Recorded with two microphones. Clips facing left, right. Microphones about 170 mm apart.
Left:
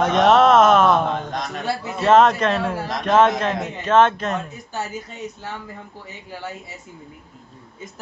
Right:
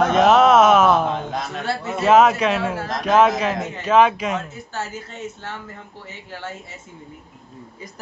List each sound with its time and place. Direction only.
0.0 s a man's voice: 5° right (ahead or behind)
4.5 s speech: 15° left (ahead or behind)
6.3 s a man's voice: 5° left (ahead or behind)